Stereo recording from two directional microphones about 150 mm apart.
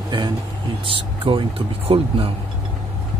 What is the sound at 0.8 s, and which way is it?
Speech, 35° right (ahead or behind).